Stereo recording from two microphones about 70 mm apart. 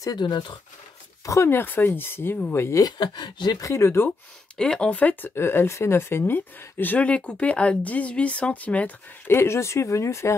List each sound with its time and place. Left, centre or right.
0.0 s speech: left
1.2 s speech: left
1.5 s speech: left
2.8 s speech: left
4.6 s speech: centre
5.3 s speech: left
9.3 s speech: left